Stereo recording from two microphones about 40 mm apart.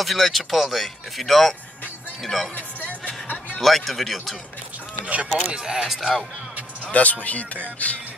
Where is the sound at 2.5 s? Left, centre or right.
Left.